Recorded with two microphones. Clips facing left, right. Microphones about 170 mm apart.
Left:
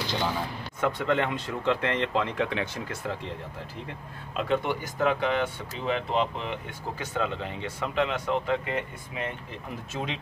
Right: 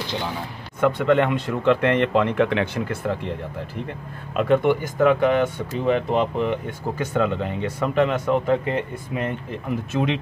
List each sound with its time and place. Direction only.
0.7 s speech: 60° right (ahead or behind)
4.3 s speech: 60° right (ahead or behind)
9.7 s speech: 70° right (ahead or behind)